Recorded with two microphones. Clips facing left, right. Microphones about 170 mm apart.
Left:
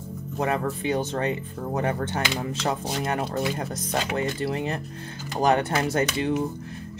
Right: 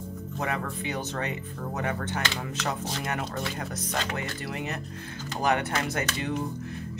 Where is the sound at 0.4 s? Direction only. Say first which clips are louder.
Left 6 dB; 35° left (ahead or behind).